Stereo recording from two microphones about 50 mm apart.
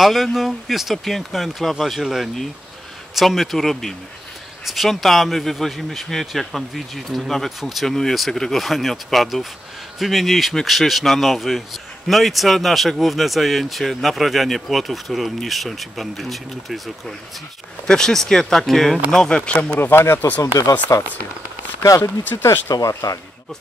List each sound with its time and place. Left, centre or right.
0.0 s speech: centre
17.8 s speech: centre
19.8 s speech: left
20.2 s speech: left
22.4 s speech: left